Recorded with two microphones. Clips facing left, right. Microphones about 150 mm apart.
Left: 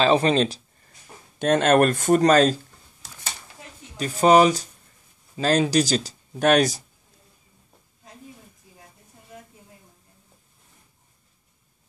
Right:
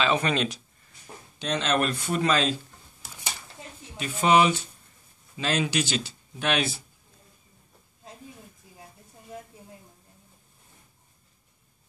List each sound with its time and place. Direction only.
0.0 s speech: 35° left (ahead or behind)
1.4 s speech: 50° left (ahead or behind)
3.0 s a sound: 10° right (ahead or behind)
3.9 s speech: 40° left (ahead or behind)